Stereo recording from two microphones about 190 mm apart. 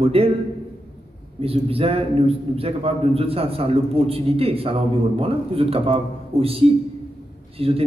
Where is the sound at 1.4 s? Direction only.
30° right (ahead or behind).